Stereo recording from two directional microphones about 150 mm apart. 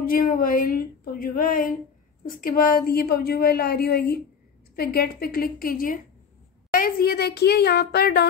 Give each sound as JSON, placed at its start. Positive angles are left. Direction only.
{"t": 0.0, "sound": "a woman's voice", "side_deg": 70}